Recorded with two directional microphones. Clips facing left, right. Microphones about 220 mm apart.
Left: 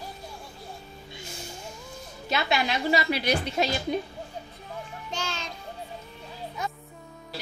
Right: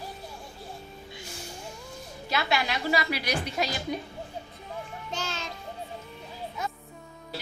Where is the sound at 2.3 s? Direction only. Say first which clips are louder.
Left 2 dB; 25° left (ahead or behind).